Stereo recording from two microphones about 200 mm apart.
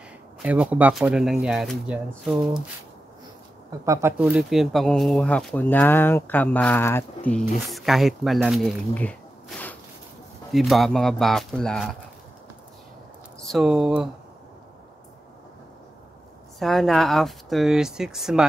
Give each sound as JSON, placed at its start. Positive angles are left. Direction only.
{"t": 0.4, "sound": "speech", "side_deg": -5}
{"t": 3.8, "sound": "speech", "side_deg": -15}
{"t": 4.2, "sound": "speech", "side_deg": -5}
{"t": 13.5, "sound": "speech", "side_deg": 0}
{"t": 16.5, "sound": "speech", "side_deg": 0}